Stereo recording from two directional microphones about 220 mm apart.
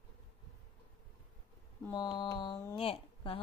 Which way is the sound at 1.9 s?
20° left (ahead or behind).